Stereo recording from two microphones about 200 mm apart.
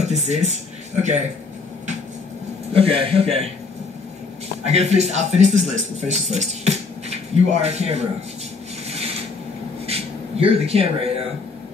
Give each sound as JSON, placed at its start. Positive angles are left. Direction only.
{"t": 0.0, "sound": "speech", "side_deg": -35}
{"t": 2.8, "sound": "a man's voice", "side_deg": -30}
{"t": 4.6, "sound": "speech", "side_deg": -35}
{"t": 8.8, "sound": "rub", "side_deg": -30}
{"t": 9.8, "sound": "a sound", "side_deg": -30}